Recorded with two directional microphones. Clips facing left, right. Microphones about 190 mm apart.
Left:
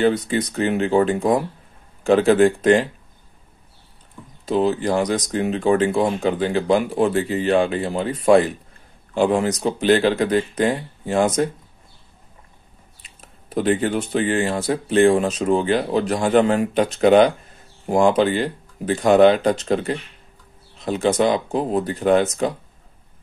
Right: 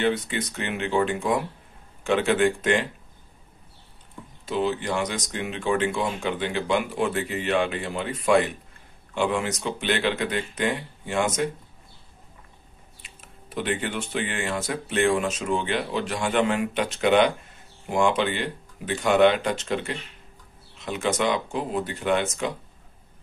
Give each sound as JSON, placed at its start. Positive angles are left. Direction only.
{"t": 0.0, "sound": "speech", "side_deg": 35}
{"t": 4.5, "sound": "speech", "side_deg": 35}
{"t": 13.0, "sound": "speech", "side_deg": 35}